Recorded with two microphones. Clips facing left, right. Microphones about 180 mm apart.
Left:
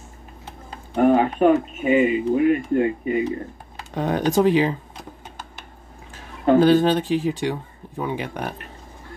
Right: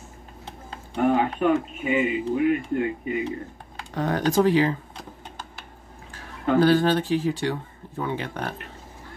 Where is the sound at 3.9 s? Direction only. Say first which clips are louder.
Left 2 dB; 15° left (ahead or behind).